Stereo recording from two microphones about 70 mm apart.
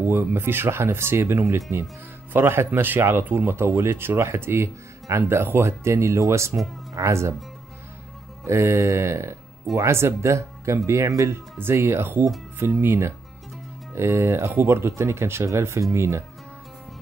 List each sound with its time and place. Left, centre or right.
0.0 s speech: right
8.5 s speech: right
11.5 s speech: right